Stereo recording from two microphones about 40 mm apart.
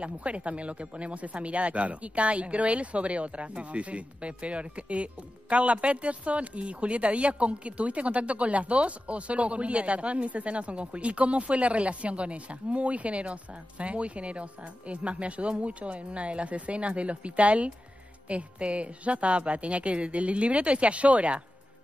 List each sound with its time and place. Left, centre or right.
0.0 s speech: right